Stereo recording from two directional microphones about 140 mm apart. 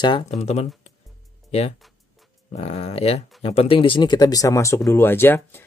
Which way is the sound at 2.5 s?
50° left (ahead or behind).